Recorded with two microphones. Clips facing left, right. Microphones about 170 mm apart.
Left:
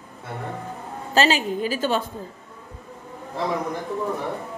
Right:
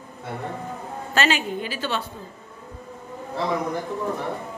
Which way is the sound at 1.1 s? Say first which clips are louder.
Left 3 dB; 35° left (ahead or behind).